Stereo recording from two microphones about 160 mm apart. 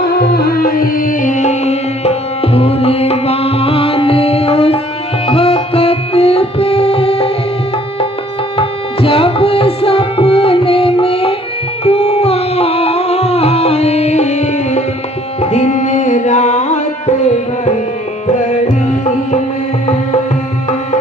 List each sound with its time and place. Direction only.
0.1 s music: 85° left; by 7.3 s 35° left (ahead or behind)
8.5 s tabla: 35° left (ahead or behind)
11.8 s music: 40° left (ahead or behind)